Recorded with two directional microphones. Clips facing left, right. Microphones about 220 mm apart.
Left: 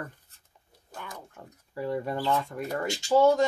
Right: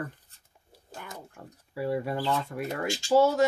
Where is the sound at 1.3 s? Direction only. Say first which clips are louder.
Right 2 dB; 10° right (ahead or behind).